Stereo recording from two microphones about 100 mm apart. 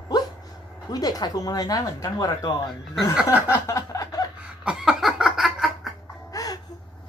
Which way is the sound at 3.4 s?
30° left (ahead or behind).